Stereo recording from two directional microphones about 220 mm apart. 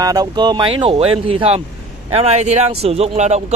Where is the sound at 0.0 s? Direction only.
15° right (ahead or behind).